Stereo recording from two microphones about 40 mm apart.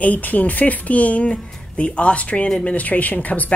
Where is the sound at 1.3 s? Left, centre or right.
Left.